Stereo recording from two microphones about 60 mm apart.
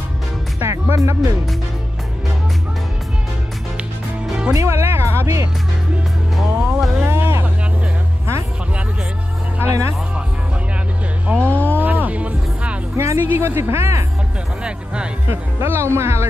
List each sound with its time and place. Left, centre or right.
0.6 s speech: right
0.9 s speech: right
4.3 s music: centre
4.6 s speech: right
6.3 s music: centre
7.1 s a sound: right
9.6 s speech: right
11.2 s speech: right
11.5 s a sound: left
11.8 s music: right
12.9 s music: right
13.2 s speech: right
13.6 s speech: right
15.2 s speech: right